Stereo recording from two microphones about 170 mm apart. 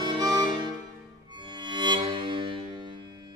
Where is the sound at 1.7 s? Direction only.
25° right (ahead or behind).